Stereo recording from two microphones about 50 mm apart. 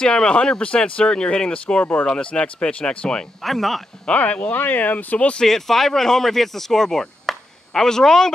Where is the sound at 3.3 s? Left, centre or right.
Centre.